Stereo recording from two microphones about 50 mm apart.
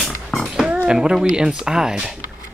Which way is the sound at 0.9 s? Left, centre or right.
Centre.